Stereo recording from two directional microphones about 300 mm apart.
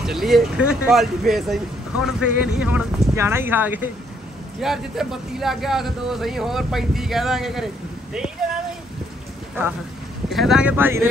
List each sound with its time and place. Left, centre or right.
0.0 s speech: centre
10.3 s speech: centre